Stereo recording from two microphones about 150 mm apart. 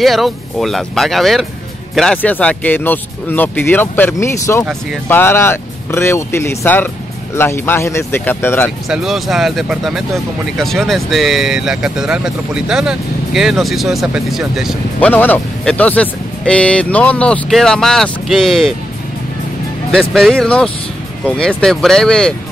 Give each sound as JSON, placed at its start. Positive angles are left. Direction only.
{"t": 0.0, "sound": "speech", "side_deg": 0}
{"t": 8.8, "sound": "speech", "side_deg": 0}
{"t": 15.0, "sound": "speech", "side_deg": 10}
{"t": 19.9, "sound": "speech", "side_deg": 0}